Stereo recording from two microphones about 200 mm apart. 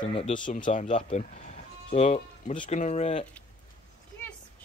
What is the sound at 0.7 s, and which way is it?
Speech, 35° left (ahead or behind).